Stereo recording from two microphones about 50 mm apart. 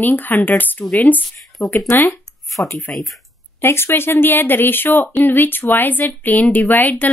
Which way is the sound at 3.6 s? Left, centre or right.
Left.